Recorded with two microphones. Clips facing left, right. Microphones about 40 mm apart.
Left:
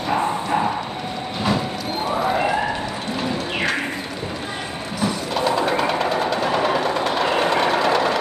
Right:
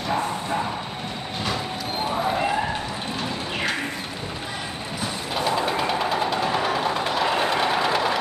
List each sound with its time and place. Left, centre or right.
0.1 s clip-clop: left
2.0 s a sound: centre
5.0 s train: centre
5.5 s music: centre
6.8 s train: centre
7.8 s vehicle: centre